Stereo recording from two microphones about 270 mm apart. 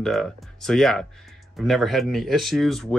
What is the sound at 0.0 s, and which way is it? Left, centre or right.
Speech, centre.